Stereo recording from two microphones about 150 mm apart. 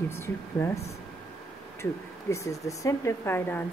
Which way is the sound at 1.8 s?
20° left (ahead or behind).